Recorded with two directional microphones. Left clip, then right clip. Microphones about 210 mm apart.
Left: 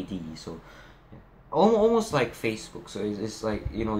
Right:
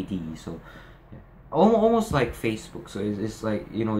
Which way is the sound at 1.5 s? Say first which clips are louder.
Right 1 dB; 5° right (ahead or behind).